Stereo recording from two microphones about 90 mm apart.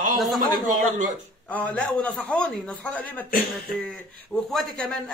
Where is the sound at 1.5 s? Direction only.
15° left (ahead or behind).